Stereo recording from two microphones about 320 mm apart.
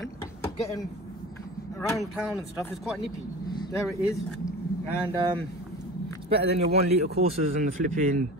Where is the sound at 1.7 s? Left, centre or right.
Centre.